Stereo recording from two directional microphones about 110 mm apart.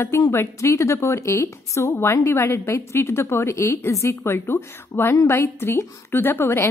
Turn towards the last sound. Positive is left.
turn(degrees=20)  # may be behind; listen again after turning